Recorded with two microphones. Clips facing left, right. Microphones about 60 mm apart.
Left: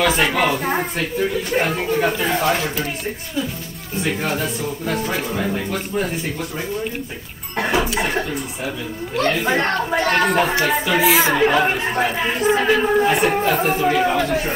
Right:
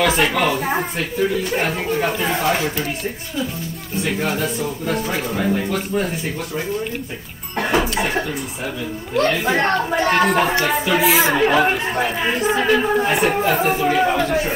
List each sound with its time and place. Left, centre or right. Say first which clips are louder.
0.0 s speech: right 1 dB; centre
0.3 s speech: even; centre
0.6 s speech: even; centre
4.0 s speech: right 1 dB; centre
7.5 s music: right 1 dB; centre
9.1 s speech: right 1 dB; centre